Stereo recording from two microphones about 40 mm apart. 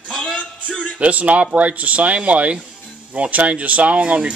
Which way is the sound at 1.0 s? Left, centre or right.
Right.